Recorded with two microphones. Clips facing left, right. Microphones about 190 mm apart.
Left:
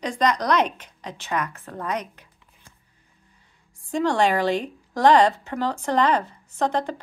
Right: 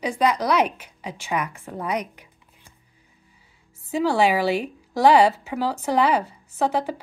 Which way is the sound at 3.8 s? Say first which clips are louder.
Right 1 dB; 5° right (ahead or behind).